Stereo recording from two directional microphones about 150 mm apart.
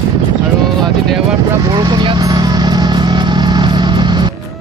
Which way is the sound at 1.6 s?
30° right (ahead or behind).